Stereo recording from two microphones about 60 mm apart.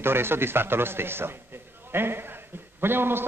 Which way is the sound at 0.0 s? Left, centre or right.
Right.